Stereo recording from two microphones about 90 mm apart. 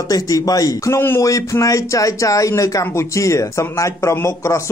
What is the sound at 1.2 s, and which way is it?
Speech, 40° left (ahead or behind).